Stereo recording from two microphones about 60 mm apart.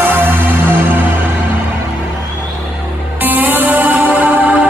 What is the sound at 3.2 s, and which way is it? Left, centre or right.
Music, right.